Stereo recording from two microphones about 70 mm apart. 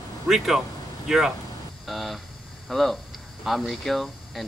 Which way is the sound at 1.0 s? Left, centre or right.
Centre.